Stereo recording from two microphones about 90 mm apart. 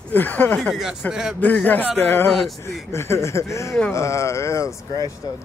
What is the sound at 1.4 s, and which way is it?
Speech, 20° left (ahead or behind).